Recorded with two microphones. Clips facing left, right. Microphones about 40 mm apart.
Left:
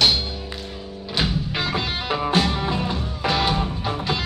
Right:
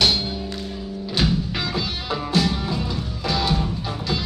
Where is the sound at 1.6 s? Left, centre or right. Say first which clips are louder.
Left 2 dB; left.